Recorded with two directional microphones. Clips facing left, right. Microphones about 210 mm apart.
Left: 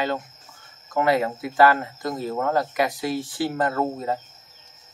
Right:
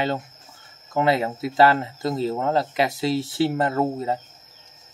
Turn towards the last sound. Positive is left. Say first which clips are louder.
# right 2 dB
turn(degrees=-25)  # may be behind; listen again after turning